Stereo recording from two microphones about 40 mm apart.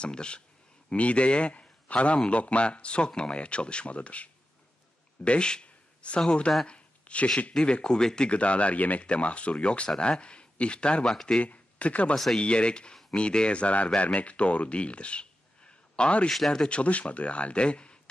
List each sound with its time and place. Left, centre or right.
0.0 s a man's voice: left
6.7 s a sound: left
7.5 s a man's voice: left
8.3 s a man's voice: left
16.3 s speech: centre
16.6 s a man's voice: left